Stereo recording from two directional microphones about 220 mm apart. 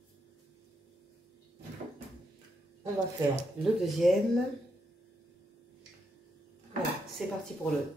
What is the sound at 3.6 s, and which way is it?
Speech, centre (ahead or behind).